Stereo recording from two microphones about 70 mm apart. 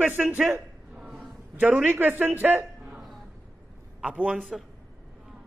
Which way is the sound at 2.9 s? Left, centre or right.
Centre.